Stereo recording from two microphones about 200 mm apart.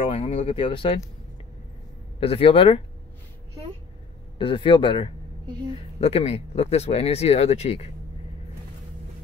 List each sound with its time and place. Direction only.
0.1 s speech: 30° left (ahead or behind)
2.1 s speech: 30° left (ahead or behind)
4.4 s speech: 25° left (ahead or behind)
5.5 s a woman's voice: 20° right (ahead or behind)
5.9 s speech: 30° left (ahead or behind)